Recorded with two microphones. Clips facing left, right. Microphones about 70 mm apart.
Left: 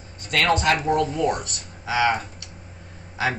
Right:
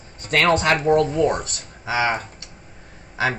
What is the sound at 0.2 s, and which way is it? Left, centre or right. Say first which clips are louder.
A man's voice: right 3 dB; right.